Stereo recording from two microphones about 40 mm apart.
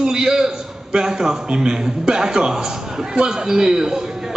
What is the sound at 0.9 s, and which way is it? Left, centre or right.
A man's voice, centre.